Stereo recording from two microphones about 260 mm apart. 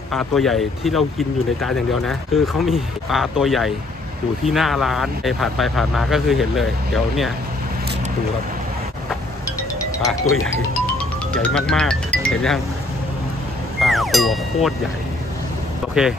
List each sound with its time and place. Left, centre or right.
0.1 s speech: centre
11.4 s speech: centre
13.7 s music: centre
15.9 s speech: centre